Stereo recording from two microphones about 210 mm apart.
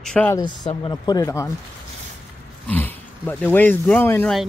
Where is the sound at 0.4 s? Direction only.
20° left (ahead or behind).